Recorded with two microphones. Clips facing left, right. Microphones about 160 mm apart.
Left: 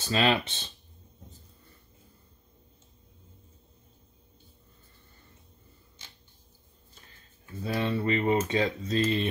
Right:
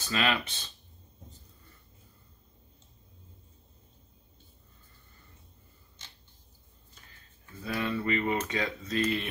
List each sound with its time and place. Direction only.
0.0 s speech: 30° left (ahead or behind)
7.6 s speech: 30° left (ahead or behind)